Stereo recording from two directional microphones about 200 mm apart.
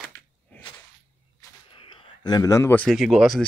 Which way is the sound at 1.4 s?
25° left (ahead or behind).